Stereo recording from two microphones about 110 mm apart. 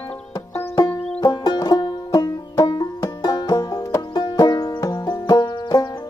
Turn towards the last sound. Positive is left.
turn(degrees=40)  # may be behind; listen again after turning